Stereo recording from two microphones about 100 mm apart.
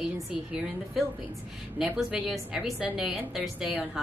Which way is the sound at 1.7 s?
5° right (ahead or behind).